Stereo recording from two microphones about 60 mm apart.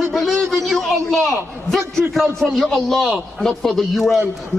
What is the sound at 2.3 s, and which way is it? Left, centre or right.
A man's voice, centre.